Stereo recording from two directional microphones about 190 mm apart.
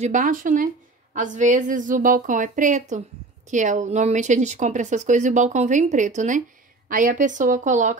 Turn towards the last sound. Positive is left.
turn(degrees=-40)  # may be behind; listen again after turning